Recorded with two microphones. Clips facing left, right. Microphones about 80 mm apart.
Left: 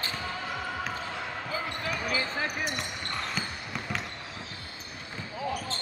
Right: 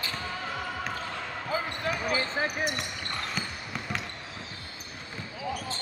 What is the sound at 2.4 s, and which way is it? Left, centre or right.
Basketball bounce, centre.